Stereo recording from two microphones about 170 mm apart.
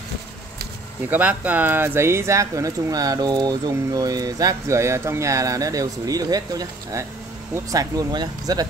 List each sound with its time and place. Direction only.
1.1 s speech: 10° right (ahead or behind)